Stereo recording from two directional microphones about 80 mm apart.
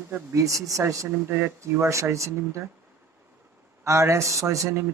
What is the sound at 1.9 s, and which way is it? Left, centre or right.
Speech, right.